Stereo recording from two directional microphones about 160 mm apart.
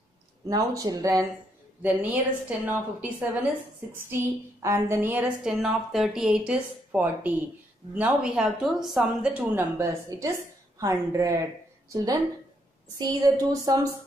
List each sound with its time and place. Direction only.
0.5 s a woman's voice: 25° right (ahead or behind)
1.8 s a woman's voice: 10° right (ahead or behind)
13.0 s a woman's voice: 25° right (ahead or behind)